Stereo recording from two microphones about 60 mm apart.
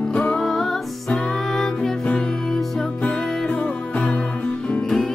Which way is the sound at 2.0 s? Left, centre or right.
Centre.